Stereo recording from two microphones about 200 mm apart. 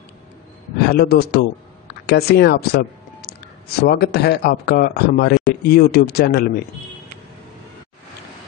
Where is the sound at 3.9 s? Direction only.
55° left (ahead or behind).